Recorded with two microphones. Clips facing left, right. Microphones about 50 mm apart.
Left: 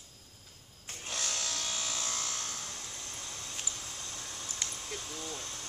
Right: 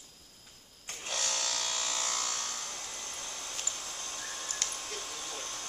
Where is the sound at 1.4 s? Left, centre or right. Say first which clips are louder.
Right 2 dB; right.